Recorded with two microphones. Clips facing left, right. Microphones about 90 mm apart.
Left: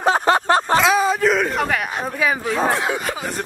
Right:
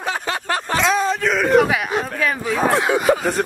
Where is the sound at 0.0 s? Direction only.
35° left (ahead or behind).